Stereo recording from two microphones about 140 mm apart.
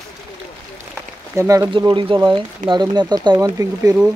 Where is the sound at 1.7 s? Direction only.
30° right (ahead or behind).